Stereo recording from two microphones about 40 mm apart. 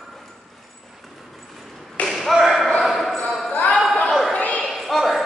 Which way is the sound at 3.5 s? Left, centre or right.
Left.